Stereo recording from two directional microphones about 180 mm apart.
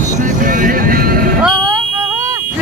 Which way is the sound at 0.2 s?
50° right (ahead or behind).